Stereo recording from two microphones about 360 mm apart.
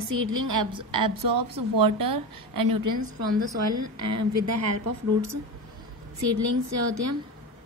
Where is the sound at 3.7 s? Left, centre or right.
Right.